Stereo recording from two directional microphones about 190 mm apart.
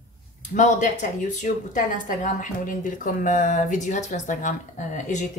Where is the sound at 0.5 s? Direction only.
40° left (ahead or behind).